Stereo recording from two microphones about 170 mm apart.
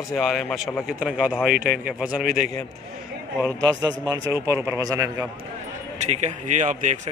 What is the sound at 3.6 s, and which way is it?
A man's voice, 25° right (ahead or behind).